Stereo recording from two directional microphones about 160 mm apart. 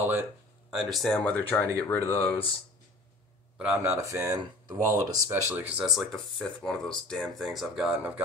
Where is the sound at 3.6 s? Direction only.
15° right (ahead or behind).